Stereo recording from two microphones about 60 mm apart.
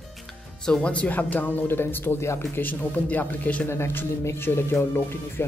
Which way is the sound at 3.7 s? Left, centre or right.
Left.